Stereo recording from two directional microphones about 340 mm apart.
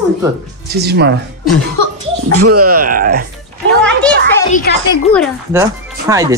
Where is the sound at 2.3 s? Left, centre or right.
Right.